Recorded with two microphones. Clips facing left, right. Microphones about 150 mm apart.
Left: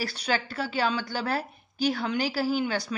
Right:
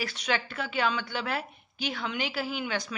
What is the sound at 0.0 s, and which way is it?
A woman's voice, 35° left (ahead or behind).